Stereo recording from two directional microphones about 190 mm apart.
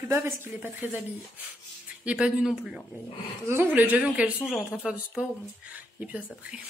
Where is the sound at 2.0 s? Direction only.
5° right (ahead or behind).